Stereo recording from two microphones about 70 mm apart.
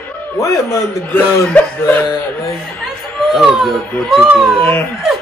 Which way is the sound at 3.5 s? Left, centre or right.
Centre.